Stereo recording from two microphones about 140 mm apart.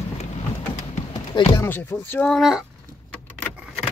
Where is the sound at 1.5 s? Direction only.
15° left (ahead or behind).